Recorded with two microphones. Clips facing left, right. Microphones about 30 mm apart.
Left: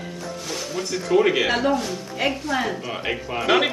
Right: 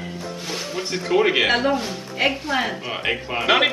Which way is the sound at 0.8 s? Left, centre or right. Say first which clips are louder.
Even; right.